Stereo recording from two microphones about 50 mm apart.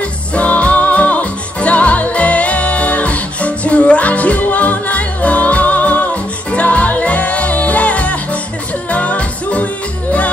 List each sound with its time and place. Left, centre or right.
0.3 s music: left